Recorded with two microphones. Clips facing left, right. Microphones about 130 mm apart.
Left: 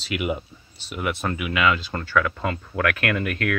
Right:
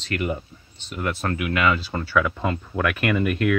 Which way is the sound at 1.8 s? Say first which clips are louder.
Right 1 dB; 10° right (ahead or behind).